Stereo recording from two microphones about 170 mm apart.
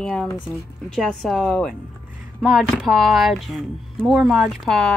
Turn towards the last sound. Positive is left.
turn(degrees=0)  # may be behind; listen again after turning